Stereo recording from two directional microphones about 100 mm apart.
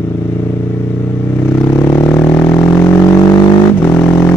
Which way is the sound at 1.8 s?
35° left (ahead or behind).